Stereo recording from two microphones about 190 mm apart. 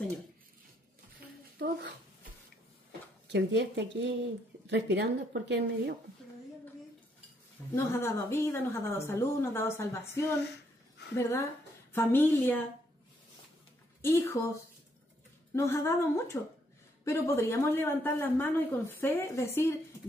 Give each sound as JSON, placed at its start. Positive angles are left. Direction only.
{"t": 1.6, "sound": "speech", "side_deg": -55}
{"t": 3.3, "sound": "speech", "side_deg": -65}
{"t": 7.7, "sound": "a woman's voice", "side_deg": 15}
{"t": 11.1, "sound": "a woman's voice", "side_deg": 15}
{"t": 14.0, "sound": "a woman's voice", "side_deg": 15}
{"t": 15.5, "sound": "a woman's voice", "side_deg": 15}